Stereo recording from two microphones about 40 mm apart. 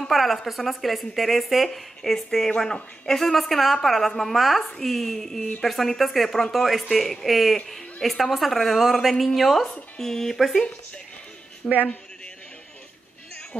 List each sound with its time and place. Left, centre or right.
0.1 s a woman's voice: centre
11.6 s a man's voice: left